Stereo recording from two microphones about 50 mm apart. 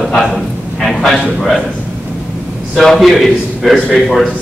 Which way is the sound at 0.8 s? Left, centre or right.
Centre.